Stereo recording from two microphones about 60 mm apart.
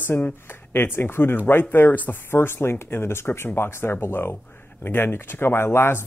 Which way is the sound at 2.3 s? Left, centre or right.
Left.